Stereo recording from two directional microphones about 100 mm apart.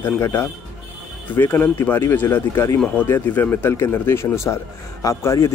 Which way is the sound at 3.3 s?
20° left (ahead or behind).